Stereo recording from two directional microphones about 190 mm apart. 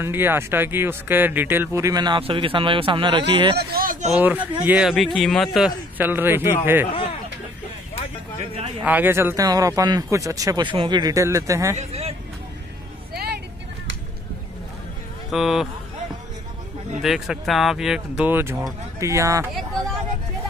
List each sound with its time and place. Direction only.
0.0 s speech: 10° right (ahead or behind); by 3.5 s 25° right (ahead or behind)
3.5 s speech: 50° right (ahead or behind)
4.2 s a man's voice: 10° right (ahead or behind)
8.8 s speech: 10° right (ahead or behind)
11.7 s speech: 35° right (ahead or behind)
13.1 s vehicle: 55° right (ahead or behind)
15.3 s a man's voice: centre (ahead or behind)
17.0 s speech: centre (ahead or behind)